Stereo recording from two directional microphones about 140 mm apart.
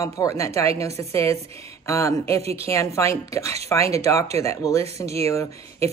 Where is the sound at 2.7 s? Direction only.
20° left (ahead or behind).